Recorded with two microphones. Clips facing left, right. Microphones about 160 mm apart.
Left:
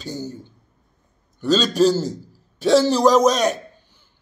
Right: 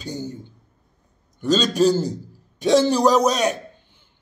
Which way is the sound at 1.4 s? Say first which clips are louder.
Left 1 dB; 10° right (ahead or behind).